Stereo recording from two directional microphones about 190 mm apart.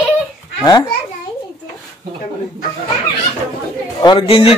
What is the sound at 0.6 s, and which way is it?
Speech, 20° left (ahead or behind).